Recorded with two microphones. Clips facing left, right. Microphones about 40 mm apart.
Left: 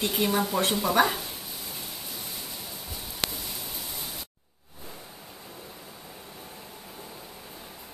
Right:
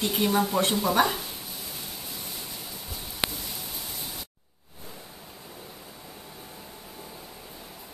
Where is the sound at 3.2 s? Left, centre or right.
Centre.